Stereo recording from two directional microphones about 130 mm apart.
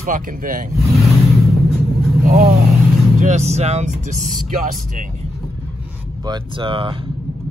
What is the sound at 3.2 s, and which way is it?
Speech, 65° right (ahead or behind).